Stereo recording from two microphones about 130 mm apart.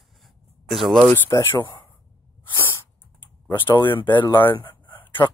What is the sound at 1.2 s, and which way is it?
Speech, 20° left (ahead or behind).